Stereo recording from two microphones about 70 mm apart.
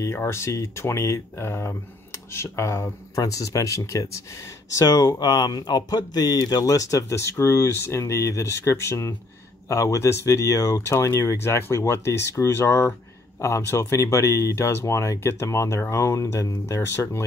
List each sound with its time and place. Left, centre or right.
0.0 s speech: left
3.2 s speech: left
5.2 s speech: left
7.2 s speech: left